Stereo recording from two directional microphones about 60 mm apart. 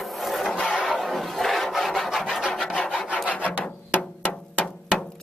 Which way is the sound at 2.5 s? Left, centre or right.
Centre.